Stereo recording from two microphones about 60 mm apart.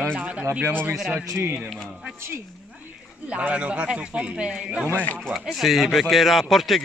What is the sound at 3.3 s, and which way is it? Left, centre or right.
Speech, right.